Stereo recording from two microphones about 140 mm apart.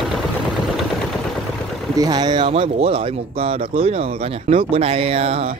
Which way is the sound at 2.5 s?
45° right (ahead or behind).